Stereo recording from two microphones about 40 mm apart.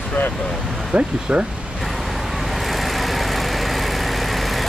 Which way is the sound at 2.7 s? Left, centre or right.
Centre.